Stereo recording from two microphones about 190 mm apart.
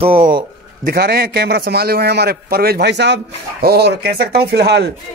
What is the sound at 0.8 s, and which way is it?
A man's voice, 55° right (ahead or behind).